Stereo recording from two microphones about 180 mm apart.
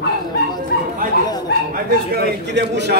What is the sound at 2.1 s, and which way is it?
Speech, 65° right (ahead or behind).